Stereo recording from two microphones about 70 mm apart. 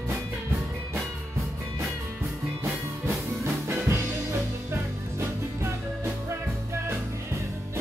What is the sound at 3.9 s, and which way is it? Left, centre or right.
Music, right.